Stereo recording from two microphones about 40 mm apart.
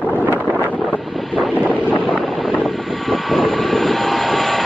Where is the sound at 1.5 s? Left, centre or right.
Right.